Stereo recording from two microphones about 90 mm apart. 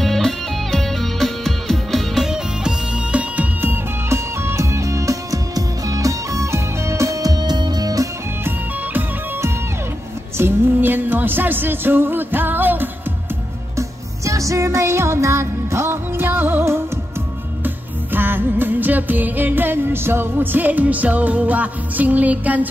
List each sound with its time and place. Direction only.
0.0 s music: 5° left (ahead or behind); by 8.1 s 45° right (ahead or behind)
8.5 s music: 25° right (ahead or behind)
13.7 s music: 35° right (ahead or behind); by 22.7 s 15° right (ahead or behind)